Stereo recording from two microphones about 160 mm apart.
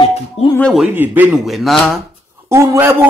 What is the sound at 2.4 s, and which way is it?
Speech, 20° right (ahead or behind).